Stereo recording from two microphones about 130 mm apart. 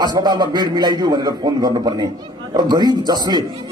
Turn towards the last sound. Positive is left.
turn(degrees=-30)  # may be behind; listen again after turning